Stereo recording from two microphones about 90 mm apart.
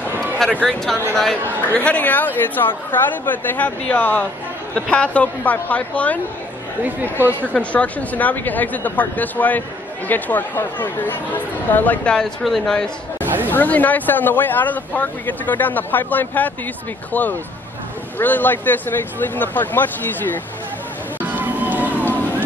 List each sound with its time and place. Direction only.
0.6 s speech: 5° left (ahead or behind)
1.6 s speech: 15° left (ahead or behind)
6.8 s speech: 20° right (ahead or behind)
7.5 s speech: 15° left (ahead or behind)
13.5 s speech: 20° left (ahead or behind)
21.2 s a sound: 20° right (ahead or behind)